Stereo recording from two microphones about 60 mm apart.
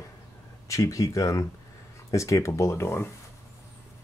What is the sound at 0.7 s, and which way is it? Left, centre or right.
Speech, left.